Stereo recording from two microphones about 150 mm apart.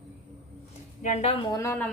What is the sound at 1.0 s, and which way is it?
Speech, 45° left (ahead or behind).